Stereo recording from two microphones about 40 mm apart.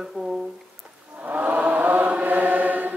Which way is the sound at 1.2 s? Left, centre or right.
Right.